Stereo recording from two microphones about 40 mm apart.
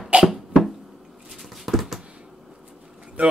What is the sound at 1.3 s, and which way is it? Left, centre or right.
Patter, centre.